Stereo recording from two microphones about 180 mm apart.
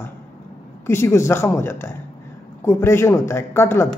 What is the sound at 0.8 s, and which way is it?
A woman's voice, 15° left (ahead or behind).